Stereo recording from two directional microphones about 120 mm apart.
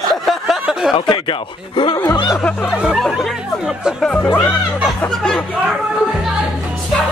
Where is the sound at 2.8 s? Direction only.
5° right (ahead or behind).